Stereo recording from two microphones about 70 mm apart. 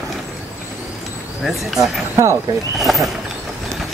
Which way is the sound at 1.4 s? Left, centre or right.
Centre.